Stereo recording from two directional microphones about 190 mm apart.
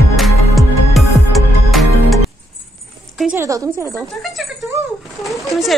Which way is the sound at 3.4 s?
15° right (ahead or behind).